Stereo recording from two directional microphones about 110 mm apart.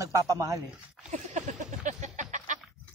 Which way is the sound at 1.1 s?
90° right.